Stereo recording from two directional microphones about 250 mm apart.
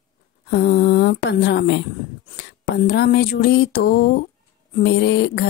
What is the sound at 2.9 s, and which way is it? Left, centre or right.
Speech, left.